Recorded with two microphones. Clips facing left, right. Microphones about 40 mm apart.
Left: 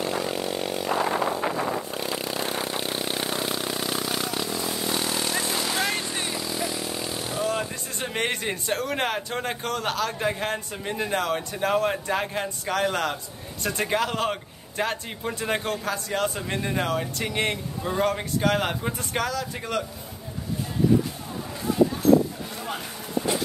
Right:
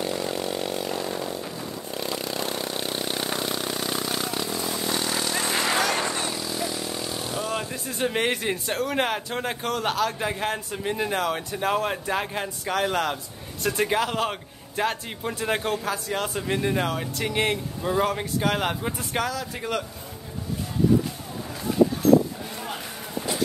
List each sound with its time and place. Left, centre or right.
0.2 s vehicle: centre
0.9 s vehicle: left
1.4 s vehicle: left
1.9 s vehicle: centre
2.8 s vehicle: centre
5.4 s vehicle: right
6.3 s speech: centre